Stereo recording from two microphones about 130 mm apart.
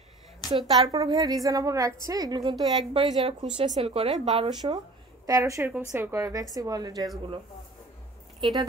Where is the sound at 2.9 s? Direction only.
45° right (ahead or behind).